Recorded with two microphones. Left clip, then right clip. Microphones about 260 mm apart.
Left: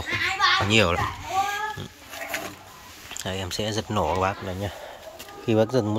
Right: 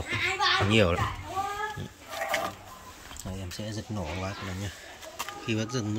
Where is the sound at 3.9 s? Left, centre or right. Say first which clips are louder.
Left 14 dB; left.